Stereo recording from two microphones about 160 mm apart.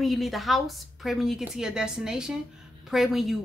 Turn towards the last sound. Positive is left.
turn(degrees=0)  # may be behind; listen again after turning